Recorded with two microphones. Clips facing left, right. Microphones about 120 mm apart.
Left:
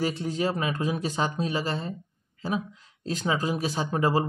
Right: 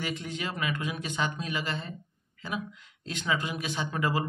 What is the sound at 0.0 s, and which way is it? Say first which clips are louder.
Speech: left 7 dB; 35° left (ahead or behind).